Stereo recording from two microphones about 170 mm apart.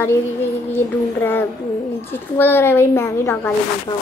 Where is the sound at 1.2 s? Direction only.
10° left (ahead or behind).